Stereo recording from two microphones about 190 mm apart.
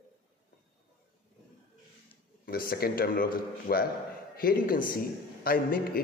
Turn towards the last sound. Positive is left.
turn(degrees=50)  # may be behind; listen again after turning